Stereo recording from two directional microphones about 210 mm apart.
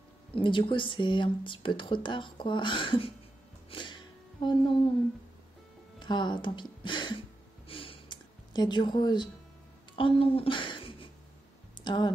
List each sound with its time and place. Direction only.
0.3 s speech: 25° left (ahead or behind)
3.7 s music: 20° left (ahead or behind)
5.9 s a sound: 20° left (ahead or behind)
9.9 s a woman's voice: 25° left (ahead or behind)